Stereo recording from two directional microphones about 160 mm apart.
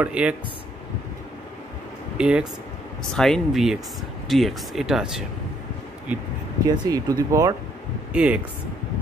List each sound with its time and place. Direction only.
0.0 s speech: 5° right (ahead or behind)
2.1 s speech: 5° right (ahead or behind)
6.7 s speech: 25° right (ahead or behind)
8.1 s speech: 10° right (ahead or behind)